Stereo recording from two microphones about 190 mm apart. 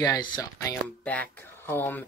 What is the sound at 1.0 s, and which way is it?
Speech, 5° left (ahead or behind).